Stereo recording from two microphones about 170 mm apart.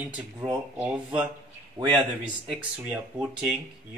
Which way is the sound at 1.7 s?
30° right (ahead or behind).